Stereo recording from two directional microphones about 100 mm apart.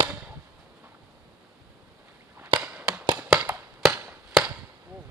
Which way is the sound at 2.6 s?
15° right (ahead or behind).